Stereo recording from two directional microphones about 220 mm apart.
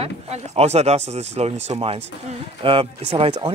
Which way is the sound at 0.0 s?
30° right (ahead or behind).